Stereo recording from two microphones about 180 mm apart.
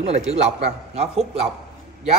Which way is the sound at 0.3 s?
35° right (ahead or behind).